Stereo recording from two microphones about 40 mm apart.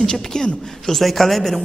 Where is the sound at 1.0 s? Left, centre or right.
Centre.